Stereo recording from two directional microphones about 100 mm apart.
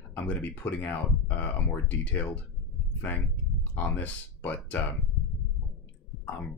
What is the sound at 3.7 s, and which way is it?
Speech, 20° left (ahead or behind).